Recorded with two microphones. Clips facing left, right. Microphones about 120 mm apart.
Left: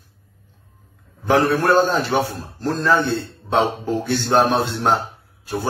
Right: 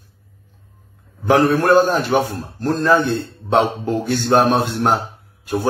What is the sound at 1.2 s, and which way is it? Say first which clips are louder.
Speech: right 2 dB; 45° right (ahead or behind).